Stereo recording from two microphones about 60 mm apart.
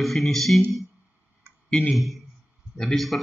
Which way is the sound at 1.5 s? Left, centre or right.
Right.